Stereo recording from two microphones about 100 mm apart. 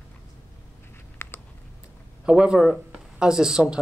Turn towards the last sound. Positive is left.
turn(degrees=-10)  # may be behind; listen again after turning